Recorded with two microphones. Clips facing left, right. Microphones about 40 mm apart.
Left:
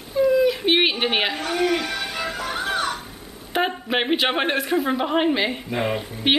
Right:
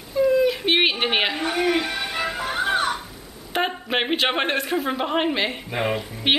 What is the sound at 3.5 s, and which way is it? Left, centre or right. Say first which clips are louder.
Speech: left 1 dB; centre.